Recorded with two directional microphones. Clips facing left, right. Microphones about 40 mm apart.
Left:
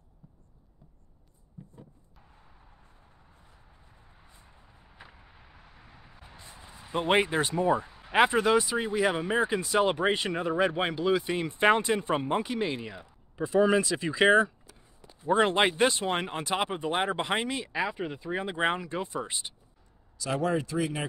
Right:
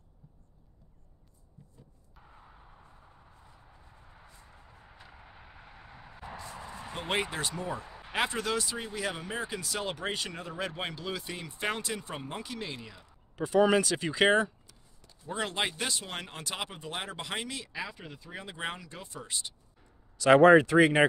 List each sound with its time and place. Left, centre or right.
1.6 s a sound: left
5.2 s vehicle: centre
6.4 s a sound: right
6.9 s speech: left
11.3 s speech: left
13.5 s speech: centre
14.4 s a sound: centre
15.2 s speech: left
20.2 s speech: right